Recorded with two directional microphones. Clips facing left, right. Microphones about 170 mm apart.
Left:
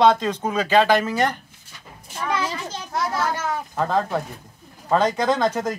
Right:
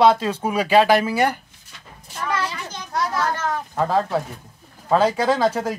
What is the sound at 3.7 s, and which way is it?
Speech, 5° right (ahead or behind).